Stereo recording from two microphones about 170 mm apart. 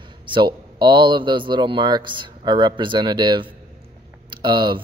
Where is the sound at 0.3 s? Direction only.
25° right (ahead or behind).